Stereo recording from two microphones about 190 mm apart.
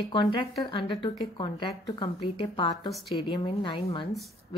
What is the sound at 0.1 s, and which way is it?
Speech, 25° left (ahead or behind).